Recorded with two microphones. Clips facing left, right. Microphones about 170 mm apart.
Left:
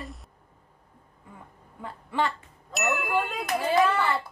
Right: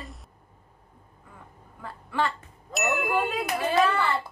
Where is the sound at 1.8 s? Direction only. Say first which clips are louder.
Even; 20° left (ahead or behind).